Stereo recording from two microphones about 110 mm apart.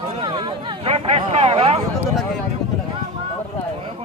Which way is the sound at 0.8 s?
65° right (ahead or behind).